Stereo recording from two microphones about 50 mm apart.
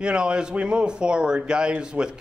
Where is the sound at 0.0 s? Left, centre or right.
Centre.